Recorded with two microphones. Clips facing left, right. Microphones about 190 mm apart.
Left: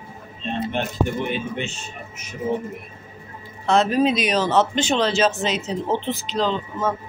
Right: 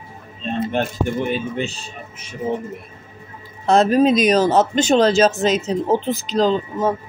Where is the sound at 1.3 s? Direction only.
35° right (ahead or behind).